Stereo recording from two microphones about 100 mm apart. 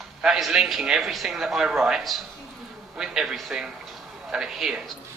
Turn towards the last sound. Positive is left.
turn(degrees=-5)  # may be behind; listen again after turning